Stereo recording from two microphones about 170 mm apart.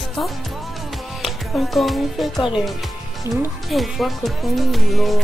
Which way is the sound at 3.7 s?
Centre (ahead or behind).